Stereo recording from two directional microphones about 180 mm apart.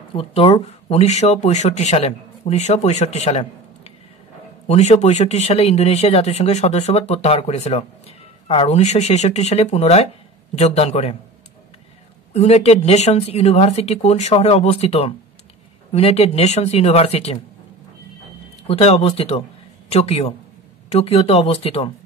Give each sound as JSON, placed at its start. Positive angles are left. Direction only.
{"t": 0.1, "sound": "speech", "side_deg": 30}
{"t": 12.4, "sound": "speech", "side_deg": 35}
{"t": 18.7, "sound": "speech", "side_deg": 35}